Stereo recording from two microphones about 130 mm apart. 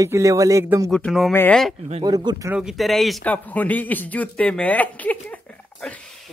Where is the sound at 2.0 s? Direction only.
30° right (ahead or behind).